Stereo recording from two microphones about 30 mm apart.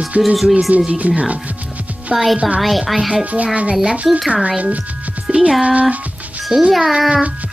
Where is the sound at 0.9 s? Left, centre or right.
Right.